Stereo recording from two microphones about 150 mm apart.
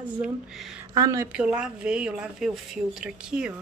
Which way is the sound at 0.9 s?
25° right (ahead or behind).